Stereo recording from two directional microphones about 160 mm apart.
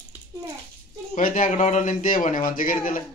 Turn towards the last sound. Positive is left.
turn(degrees=55)  # may be behind; listen again after turning